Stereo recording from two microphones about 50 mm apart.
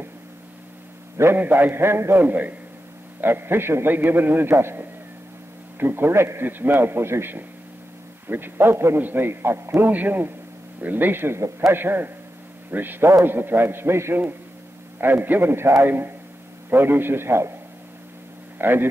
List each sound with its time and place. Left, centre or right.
1.3 s a man's voice: right
2.2 s a man's voice: right
3.9 s a man's voice: right
6.4 s a man's voice: right
9.8 s speech: right
11.3 s a man's voice: right
11.7 s a man's voice: right
15.0 s a man's voice: right
18.6 s speech: right